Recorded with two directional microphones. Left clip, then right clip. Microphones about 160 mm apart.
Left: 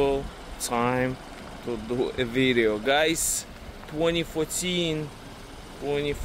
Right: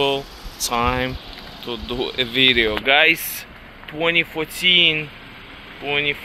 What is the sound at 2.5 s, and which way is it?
Speech, 10° left (ahead or behind).